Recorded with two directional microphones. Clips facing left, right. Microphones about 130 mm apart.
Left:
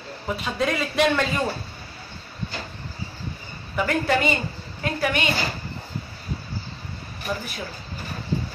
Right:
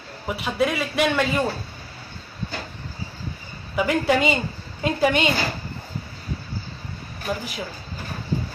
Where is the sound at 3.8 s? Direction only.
15° right (ahead or behind).